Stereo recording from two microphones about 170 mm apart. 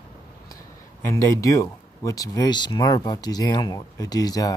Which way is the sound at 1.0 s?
20° left (ahead or behind).